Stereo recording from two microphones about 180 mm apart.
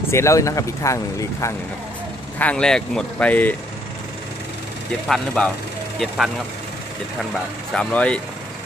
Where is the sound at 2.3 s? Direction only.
5° left (ahead or behind).